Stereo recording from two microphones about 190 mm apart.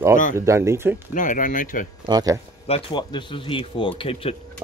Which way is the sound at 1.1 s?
45° left (ahead or behind).